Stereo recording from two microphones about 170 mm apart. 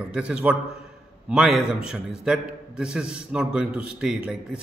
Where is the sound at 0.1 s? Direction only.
5° right (ahead or behind).